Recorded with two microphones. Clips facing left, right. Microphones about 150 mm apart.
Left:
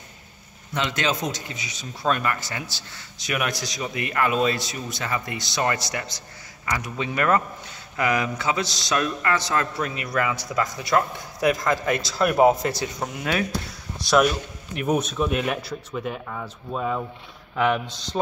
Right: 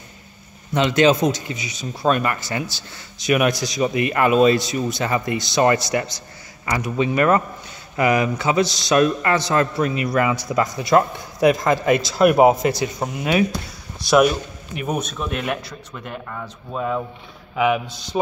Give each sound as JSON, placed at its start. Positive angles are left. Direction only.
{"t": 0.7, "sound": "a man's voice", "side_deg": -20}